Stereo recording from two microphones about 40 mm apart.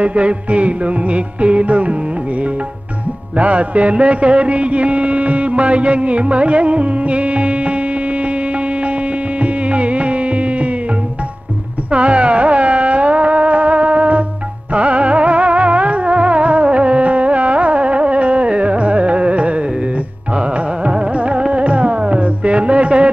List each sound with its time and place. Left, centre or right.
0.0 s music: right
3.3 s music: right
9.4 s music: right
11.9 s music: right
20.3 s carnatic music: right
21.5 s music: right